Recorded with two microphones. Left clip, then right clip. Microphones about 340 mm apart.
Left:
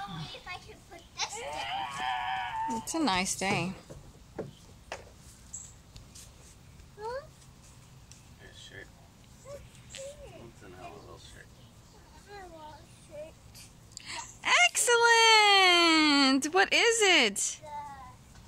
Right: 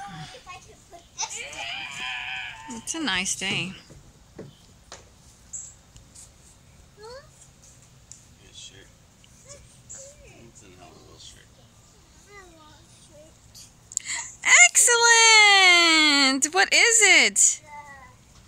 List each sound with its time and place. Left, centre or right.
1.6 s a sound: left
2.9 s a woman's voice: centre
13.8 s whimper: centre